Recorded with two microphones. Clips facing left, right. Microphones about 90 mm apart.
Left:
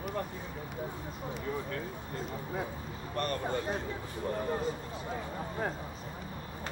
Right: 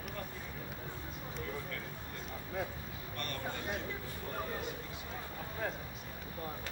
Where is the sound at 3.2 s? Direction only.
35° left (ahead or behind).